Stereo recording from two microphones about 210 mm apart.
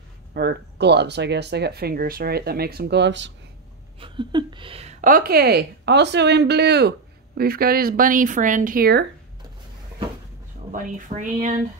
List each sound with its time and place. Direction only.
0.3 s a woman's voice: 50° right (ahead or behind)
4.0 s a woman's voice: 20° right (ahead or behind); by 9.0 s 45° right (ahead or behind)
10.7 s speech: 40° right (ahead or behind)